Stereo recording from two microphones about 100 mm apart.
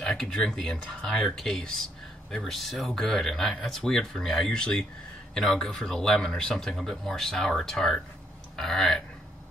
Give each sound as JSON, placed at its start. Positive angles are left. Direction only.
{"t": 0.0, "sound": "speech", "side_deg": 5}